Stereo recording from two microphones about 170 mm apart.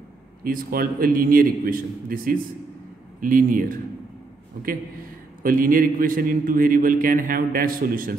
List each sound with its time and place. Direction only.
0.4 s a man's voice: 55° right (ahead or behind)
5.4 s a man's voice: 55° right (ahead or behind)